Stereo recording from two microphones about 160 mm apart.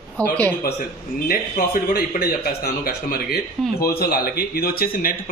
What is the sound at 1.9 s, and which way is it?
Speech, 75° left (ahead or behind).